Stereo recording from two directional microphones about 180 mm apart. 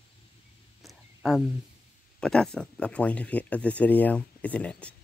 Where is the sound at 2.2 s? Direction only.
5° left (ahead or behind).